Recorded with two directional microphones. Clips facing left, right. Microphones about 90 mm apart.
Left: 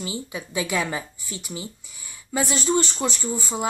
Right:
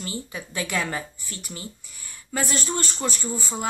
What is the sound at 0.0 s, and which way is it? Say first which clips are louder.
Speech: left 2 dB; 10° left (ahead or behind).